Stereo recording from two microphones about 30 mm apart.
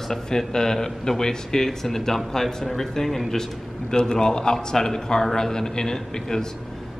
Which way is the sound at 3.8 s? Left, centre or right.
Left.